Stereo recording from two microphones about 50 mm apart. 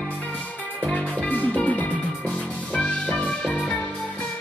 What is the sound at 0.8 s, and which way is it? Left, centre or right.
Music, centre.